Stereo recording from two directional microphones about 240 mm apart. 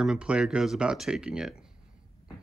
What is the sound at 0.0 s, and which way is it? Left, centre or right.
Speech, centre.